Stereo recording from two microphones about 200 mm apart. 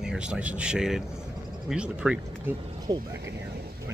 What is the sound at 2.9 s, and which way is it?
Speech, 20° right (ahead or behind).